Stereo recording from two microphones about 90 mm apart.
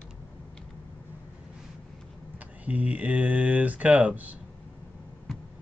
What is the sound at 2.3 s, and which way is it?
Speech, 15° right (ahead or behind).